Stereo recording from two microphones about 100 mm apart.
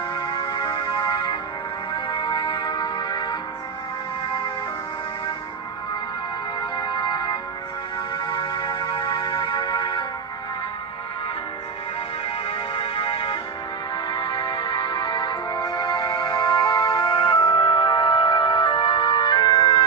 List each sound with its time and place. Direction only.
0.1 s music: 45° left (ahead or behind)
6.8 s music: 45° left (ahead or behind)
12.4 s music: 60° left (ahead or behind)